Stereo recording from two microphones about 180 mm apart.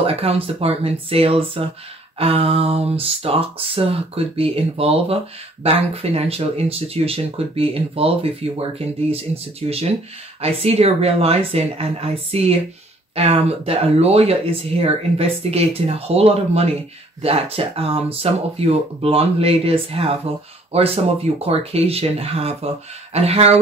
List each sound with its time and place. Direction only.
0.0 s speech: 35° right (ahead or behind)